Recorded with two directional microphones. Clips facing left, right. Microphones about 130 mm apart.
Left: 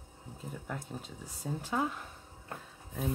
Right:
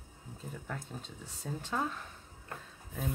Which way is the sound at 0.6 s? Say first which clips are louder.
Left 2 dB; 10° left (ahead or behind).